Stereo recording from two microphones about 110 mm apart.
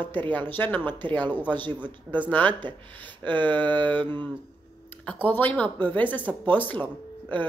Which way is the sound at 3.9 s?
15° left (ahead or behind).